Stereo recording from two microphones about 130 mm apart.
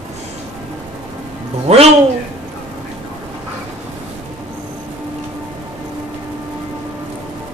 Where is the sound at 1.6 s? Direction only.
55° right (ahead or behind).